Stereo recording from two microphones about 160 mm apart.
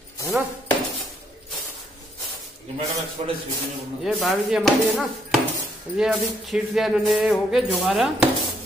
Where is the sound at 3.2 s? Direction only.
45° right (ahead or behind).